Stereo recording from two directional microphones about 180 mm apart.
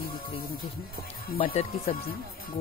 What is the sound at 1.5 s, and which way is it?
Speech, 35° left (ahead or behind).